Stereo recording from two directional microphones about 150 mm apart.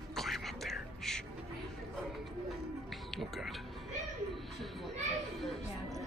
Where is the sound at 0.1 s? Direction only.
Centre (ahead or behind).